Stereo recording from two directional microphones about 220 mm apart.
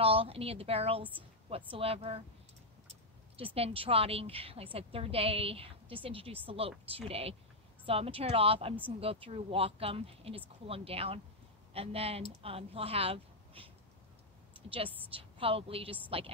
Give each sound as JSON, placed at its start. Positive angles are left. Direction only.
{"t": 0.0, "sound": "speech", "side_deg": -25}
{"t": 15.1, "sound": "speech", "side_deg": -25}